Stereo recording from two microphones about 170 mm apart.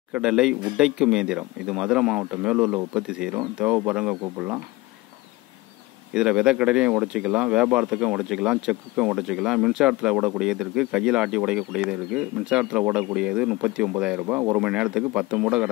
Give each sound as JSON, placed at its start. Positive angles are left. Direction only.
{"t": 0.1, "sound": "speech", "side_deg": -5}
{"t": 6.1, "sound": "speech", "side_deg": -5}